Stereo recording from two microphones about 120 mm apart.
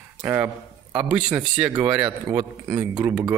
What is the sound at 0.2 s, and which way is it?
A man's voice, 20° right (ahead or behind).